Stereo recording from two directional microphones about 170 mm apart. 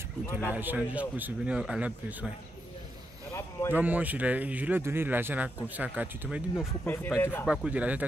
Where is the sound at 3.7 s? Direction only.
10° right (ahead or behind).